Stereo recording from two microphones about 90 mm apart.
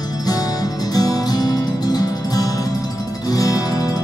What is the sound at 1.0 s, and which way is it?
Music, 45° left (ahead or behind).